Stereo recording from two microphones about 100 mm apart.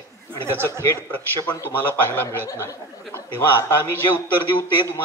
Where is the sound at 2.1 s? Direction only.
20° left (ahead or behind).